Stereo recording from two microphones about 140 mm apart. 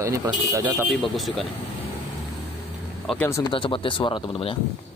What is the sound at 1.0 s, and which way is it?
Speech, centre (ahead or behind).